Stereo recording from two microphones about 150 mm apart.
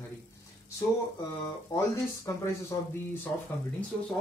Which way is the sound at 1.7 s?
20° left (ahead or behind).